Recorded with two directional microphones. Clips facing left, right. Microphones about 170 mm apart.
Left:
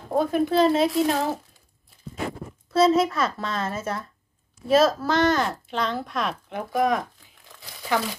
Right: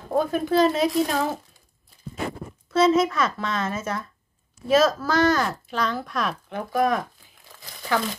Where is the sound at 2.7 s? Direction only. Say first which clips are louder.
Even; 30° left (ahead or behind).